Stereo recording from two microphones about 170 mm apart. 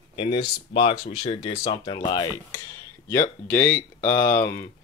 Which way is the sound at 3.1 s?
15° left (ahead or behind).